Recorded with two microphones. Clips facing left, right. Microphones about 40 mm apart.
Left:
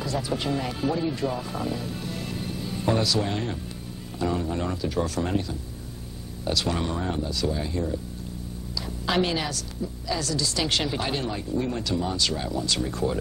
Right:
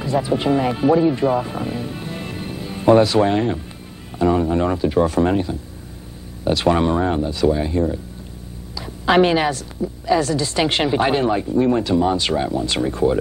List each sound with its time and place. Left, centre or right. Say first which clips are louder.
0.0 s a woman's voice: right 8 dB; right